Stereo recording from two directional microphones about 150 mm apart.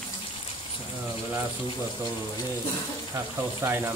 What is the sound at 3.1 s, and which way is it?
Speech, 20° right (ahead or behind).